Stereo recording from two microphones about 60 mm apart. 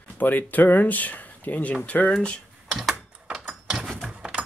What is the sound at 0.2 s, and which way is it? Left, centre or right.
Speech, left.